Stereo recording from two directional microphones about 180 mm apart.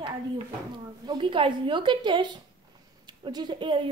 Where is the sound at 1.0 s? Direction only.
25° right (ahead or behind).